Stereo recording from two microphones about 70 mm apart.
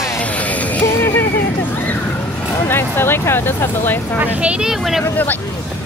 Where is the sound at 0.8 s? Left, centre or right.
Left.